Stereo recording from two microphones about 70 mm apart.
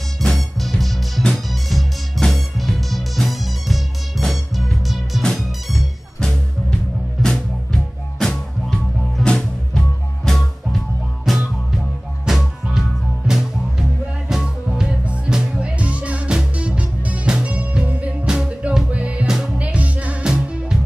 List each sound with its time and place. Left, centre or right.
0.2 s music: centre
19.2 s music: centre
19.6 s music: centre